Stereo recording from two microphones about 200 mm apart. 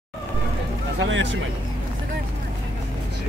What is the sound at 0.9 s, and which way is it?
Speech, 70° right (ahead or behind).